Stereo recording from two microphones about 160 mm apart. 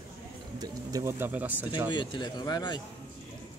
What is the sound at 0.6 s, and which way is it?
Speech, 20° right (ahead or behind).